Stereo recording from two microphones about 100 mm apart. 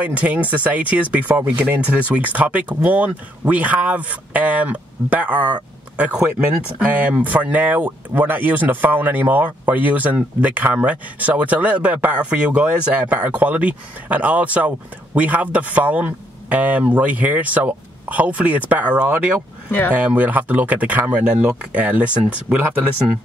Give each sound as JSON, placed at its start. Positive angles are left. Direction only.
{"t": 0.0, "sound": "speech", "side_deg": -15}